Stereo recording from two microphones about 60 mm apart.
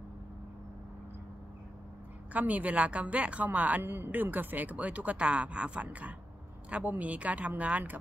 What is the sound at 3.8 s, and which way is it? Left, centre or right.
Speech, right.